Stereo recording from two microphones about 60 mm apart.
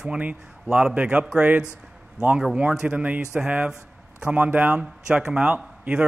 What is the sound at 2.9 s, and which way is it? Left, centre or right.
A man's voice, right.